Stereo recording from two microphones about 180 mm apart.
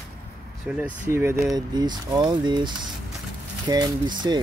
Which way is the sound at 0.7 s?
5° right (ahead or behind).